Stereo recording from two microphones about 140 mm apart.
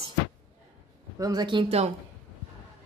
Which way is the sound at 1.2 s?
30° right (ahead or behind).